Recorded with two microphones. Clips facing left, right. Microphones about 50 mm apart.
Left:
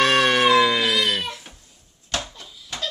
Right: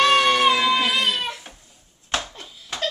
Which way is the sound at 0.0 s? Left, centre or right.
Left.